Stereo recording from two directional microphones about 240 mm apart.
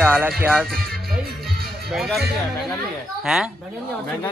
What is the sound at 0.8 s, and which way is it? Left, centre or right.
Music, centre.